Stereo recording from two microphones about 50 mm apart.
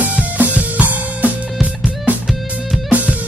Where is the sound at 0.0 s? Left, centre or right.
Right.